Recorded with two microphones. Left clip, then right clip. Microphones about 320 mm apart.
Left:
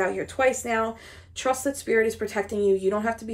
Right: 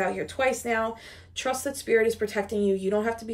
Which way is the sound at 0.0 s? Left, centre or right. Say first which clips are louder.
Left 3 dB; centre.